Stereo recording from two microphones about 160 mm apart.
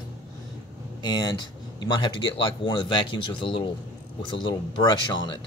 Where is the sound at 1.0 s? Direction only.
25° left (ahead or behind).